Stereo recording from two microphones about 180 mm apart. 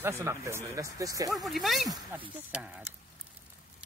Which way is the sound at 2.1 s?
10° right (ahead or behind).